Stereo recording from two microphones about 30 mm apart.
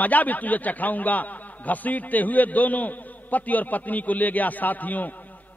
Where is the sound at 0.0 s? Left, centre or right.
Left.